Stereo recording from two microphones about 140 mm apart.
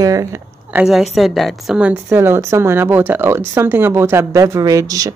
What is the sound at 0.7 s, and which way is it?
A woman's voice, 5° right (ahead or behind).